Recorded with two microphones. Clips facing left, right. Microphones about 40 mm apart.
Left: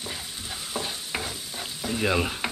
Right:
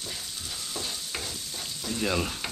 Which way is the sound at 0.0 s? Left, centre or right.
Left.